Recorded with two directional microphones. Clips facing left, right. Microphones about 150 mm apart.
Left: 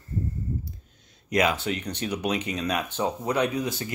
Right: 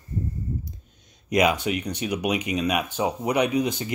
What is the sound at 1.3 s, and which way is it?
Speech, 15° right (ahead or behind).